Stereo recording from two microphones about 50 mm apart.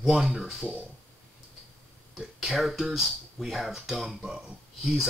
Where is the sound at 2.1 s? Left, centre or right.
Centre.